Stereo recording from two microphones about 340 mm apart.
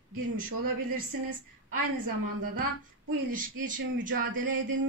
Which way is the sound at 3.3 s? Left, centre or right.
Right.